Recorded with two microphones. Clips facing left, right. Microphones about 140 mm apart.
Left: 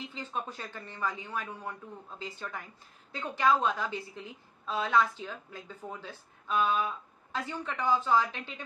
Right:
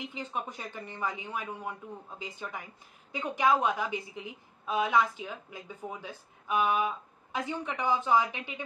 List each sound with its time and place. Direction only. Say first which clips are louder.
0.0 s speech: right 1 dB; 15° right (ahead or behind)